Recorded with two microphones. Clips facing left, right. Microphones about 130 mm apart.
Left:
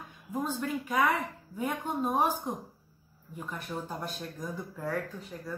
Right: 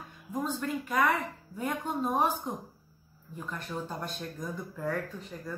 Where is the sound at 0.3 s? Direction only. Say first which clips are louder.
Even; 5° left (ahead or behind).